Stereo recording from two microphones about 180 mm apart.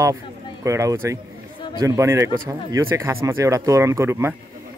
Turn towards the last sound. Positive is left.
turn(degrees=-15)  # may be behind; listen again after turning